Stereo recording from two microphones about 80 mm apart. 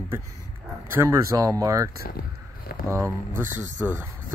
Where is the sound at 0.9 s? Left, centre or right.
Right.